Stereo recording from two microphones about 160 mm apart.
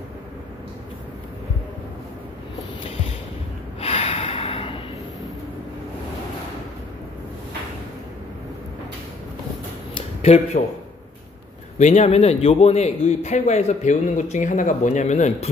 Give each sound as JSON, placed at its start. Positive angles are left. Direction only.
{"t": 3.8, "sound": "gasp", "side_deg": 40}
{"t": 9.9, "sound": "a sound", "side_deg": 40}
{"t": 11.8, "sound": "a man's voice", "side_deg": 45}